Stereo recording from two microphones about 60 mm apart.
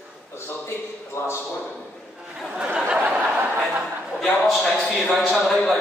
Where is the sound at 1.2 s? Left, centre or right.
Left.